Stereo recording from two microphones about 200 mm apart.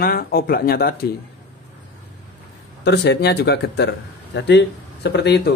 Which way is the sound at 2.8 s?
60° left (ahead or behind).